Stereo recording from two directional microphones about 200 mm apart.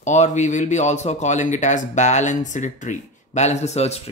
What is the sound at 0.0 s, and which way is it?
Speech, 35° left (ahead or behind).